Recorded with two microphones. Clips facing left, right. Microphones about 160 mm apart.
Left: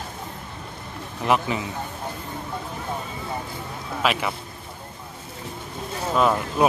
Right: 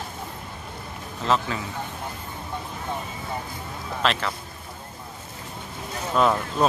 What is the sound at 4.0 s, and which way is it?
Speech, 10° left (ahead or behind).